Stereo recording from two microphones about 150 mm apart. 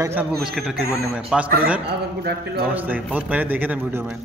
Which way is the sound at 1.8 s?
90° right.